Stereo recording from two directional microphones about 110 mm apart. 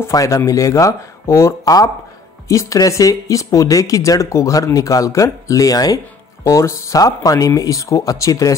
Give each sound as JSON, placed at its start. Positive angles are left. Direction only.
{"t": 0.1, "sound": "speech", "side_deg": 30}